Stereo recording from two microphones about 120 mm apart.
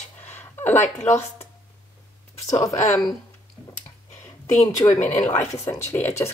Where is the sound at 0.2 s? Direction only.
20° left (ahead or behind).